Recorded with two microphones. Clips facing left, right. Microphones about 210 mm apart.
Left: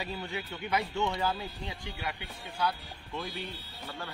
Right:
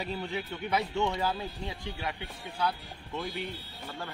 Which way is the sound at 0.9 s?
15° right (ahead or behind).